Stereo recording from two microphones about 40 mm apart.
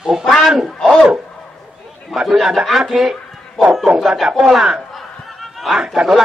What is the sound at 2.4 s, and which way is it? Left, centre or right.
A man's voice, centre.